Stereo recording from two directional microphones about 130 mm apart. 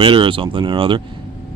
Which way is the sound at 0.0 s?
40° right (ahead or behind).